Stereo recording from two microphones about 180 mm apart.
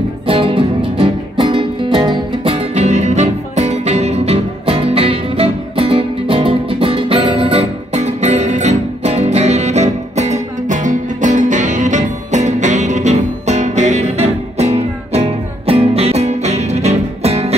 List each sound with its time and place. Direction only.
0.3 s music: 30° right (ahead or behind)